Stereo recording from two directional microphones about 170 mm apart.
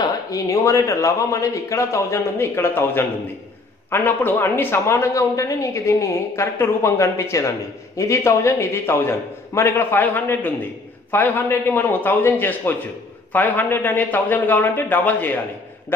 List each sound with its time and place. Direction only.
0.0 s speech: 20° left (ahead or behind)